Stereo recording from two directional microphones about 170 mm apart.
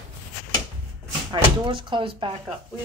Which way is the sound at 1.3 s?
30° right (ahead or behind).